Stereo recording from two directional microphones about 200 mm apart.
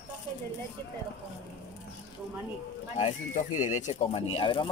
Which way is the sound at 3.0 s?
40° left (ahead or behind).